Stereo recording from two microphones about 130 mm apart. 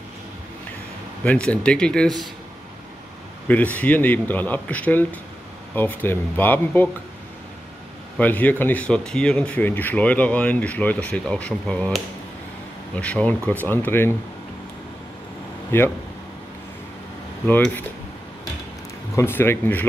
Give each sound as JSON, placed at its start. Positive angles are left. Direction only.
{"t": 1.2, "sound": "speech", "side_deg": 10}
{"t": 3.4, "sound": "speech", "side_deg": 10}
{"t": 8.2, "sound": "speech", "side_deg": 10}
{"t": 15.7, "sound": "speech", "side_deg": 15}
{"t": 17.5, "sound": "speech", "side_deg": 10}
{"t": 19.1, "sound": "speech", "side_deg": 20}